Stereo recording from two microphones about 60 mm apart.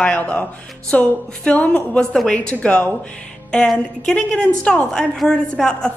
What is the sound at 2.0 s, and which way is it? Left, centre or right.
Speech, centre.